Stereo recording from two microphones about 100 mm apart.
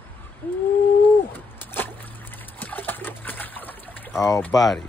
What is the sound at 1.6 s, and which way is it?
Splash, 20° left (ahead or behind).